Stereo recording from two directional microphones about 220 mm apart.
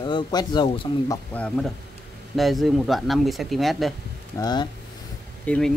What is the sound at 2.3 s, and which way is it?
Speech, centre (ahead or behind).